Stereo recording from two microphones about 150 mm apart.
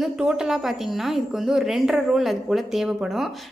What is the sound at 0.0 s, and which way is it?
Speech, 5° right (ahead or behind).